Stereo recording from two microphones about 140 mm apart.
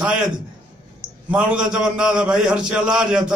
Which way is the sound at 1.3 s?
10° right (ahead or behind).